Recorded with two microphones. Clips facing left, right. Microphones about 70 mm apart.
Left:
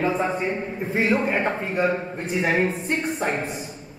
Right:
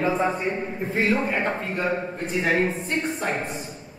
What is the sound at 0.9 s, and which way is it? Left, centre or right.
Speech, centre.